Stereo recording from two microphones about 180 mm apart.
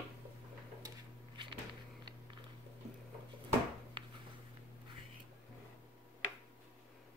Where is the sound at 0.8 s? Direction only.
25° right (ahead or behind).